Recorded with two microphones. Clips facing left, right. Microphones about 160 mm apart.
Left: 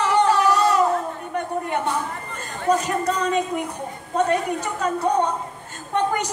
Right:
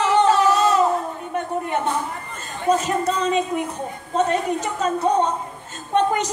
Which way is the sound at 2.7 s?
15° left (ahead or behind).